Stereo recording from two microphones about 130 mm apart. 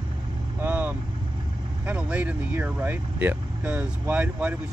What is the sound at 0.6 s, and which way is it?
Vehicle, 10° right (ahead or behind).